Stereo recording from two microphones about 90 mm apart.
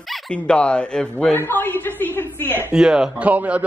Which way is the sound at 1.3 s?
25° left (ahead or behind).